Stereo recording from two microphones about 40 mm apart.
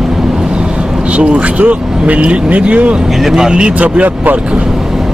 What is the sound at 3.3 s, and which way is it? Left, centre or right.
Speech, right.